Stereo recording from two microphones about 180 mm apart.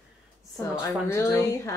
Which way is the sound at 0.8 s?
15° left (ahead or behind).